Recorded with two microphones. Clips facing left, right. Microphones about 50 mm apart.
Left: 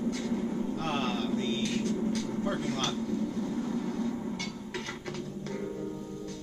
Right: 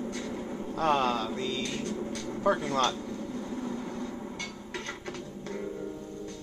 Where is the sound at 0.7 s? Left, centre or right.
Right.